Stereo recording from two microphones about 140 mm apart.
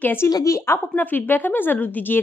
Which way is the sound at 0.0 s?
15° left (ahead or behind).